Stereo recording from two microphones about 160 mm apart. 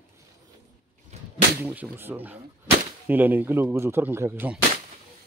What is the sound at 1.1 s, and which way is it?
Whip, 45° right (ahead or behind).